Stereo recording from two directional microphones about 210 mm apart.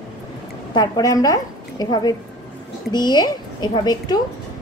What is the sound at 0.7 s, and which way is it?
A woman's voice, 20° left (ahead or behind).